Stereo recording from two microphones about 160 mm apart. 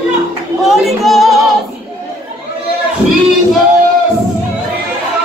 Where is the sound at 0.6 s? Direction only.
Centre (ahead or behind).